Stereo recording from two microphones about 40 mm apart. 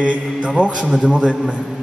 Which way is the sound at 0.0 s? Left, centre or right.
Right.